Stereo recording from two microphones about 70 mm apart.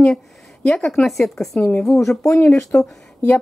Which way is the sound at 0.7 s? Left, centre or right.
Centre.